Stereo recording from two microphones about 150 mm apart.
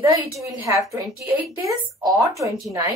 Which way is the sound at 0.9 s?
20° right (ahead or behind).